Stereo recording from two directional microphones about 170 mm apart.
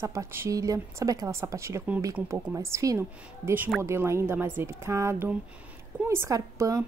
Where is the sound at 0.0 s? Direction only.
15° right (ahead or behind).